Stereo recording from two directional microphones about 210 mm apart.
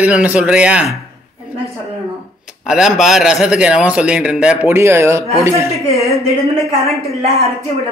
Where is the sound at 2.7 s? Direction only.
Centre (ahead or behind).